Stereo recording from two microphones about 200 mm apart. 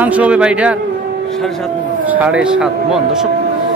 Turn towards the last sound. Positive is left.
turn(degrees=-5)  # may be behind; listen again after turning